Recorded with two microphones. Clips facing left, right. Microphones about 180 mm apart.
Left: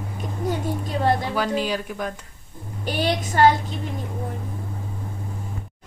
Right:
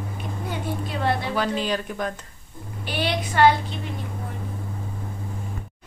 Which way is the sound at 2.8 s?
40° left (ahead or behind).